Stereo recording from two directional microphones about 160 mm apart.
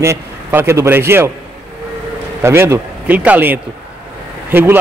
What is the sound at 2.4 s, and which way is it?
A man's voice, 15° right (ahead or behind).